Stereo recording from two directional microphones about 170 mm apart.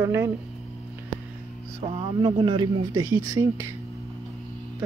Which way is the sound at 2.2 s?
30° right (ahead or behind).